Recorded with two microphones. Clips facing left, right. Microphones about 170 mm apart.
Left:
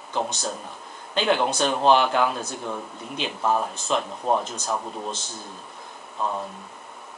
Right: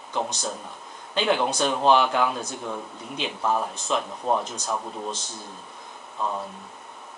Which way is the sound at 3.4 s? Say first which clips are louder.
Left 2 dB; 5° left (ahead or behind).